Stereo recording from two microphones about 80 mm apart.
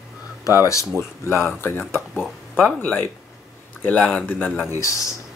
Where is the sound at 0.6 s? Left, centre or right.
Left.